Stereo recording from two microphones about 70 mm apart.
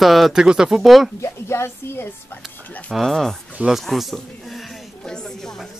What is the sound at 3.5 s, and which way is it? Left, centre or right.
Speech, centre.